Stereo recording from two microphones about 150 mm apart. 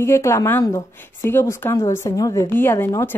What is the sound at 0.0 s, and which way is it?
A woman's voice, 20° left (ahead or behind).